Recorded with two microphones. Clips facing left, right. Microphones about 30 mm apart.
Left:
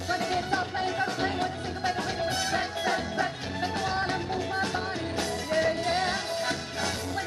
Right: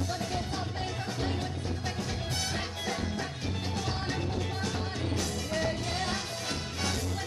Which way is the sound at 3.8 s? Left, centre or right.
Left.